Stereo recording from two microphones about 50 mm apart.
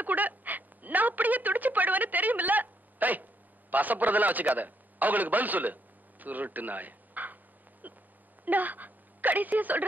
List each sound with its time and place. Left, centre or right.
0.0 s a man's voice: right
7.8 s a sound: right
8.5 s speech: right